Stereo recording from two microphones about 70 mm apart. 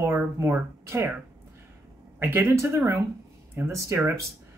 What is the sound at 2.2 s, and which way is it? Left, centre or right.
Speech, right.